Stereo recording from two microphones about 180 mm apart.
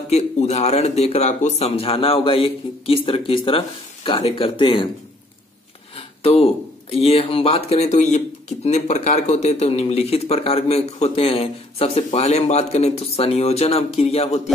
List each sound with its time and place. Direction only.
0.1 s speech: 35° left (ahead or behind)
5.9 s speech: 35° left (ahead or behind)